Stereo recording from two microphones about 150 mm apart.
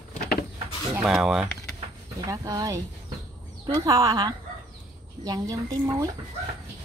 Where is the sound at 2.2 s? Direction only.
25° right (ahead or behind).